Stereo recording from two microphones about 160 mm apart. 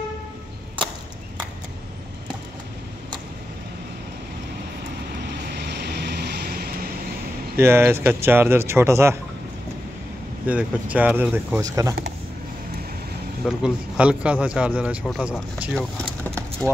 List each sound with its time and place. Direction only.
5.5 s vehicle: 90° right
7.5 s speech: 15° right (ahead or behind)
10.4 s speech: 10° right (ahead or behind)
13.6 s speech: 5° right (ahead or behind)